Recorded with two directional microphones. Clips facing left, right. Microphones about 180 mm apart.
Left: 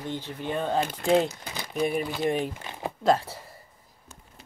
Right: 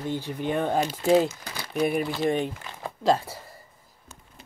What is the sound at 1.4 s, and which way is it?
Crumpling, 20° left (ahead or behind).